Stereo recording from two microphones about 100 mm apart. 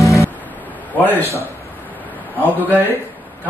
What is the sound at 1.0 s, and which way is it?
Speech, 20° left (ahead or behind).